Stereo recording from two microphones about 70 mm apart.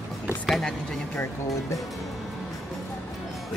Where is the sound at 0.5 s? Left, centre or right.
Centre.